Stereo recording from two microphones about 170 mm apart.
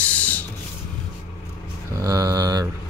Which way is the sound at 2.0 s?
20° right (ahead or behind).